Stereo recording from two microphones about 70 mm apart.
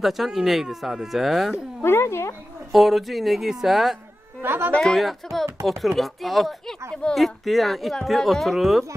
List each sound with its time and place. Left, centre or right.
0.0 s a woman's voice: centre
1.8 s speech: left
2.7 s a woman's voice: centre
4.4 s speech: right
4.7 s a woman's voice: centre